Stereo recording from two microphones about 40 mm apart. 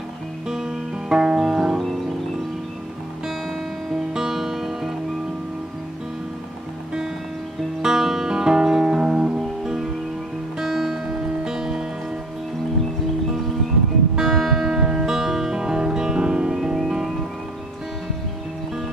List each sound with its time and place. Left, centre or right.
0.5 s music: centre
3.9 s music: centre
7.8 s music: centre
10.6 s music: centre
14.1 s music: centre
14.8 s music: centre